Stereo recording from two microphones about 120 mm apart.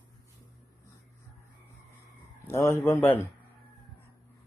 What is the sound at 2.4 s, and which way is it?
Speech, 25° left (ahead or behind).